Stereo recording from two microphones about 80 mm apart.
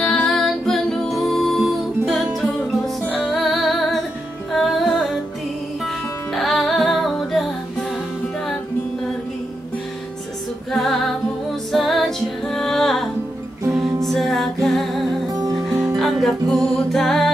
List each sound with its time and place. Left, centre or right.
0.0 s music: centre
3.3 s music: centre
6.3 s music: centre
10.7 s music: centre
15.3 s music: right
16.0 s music: centre